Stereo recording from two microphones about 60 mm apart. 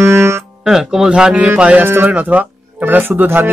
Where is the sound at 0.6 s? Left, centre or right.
Centre.